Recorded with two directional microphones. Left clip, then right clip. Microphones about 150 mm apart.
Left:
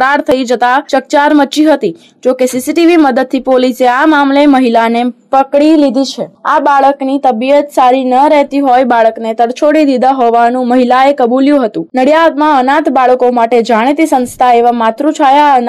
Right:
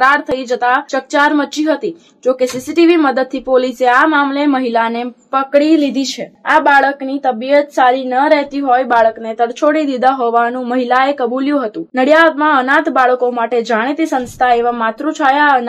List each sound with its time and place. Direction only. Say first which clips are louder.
0.0 s speech: left 3 dB; 50° left (ahead or behind); by 6.0 s 30° left (ahead or behind)
7.1 s a woman's voice: left 5 dB; 40° left (ahead or behind)